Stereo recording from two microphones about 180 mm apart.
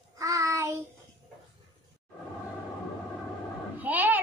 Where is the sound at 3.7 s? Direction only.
10° right (ahead or behind).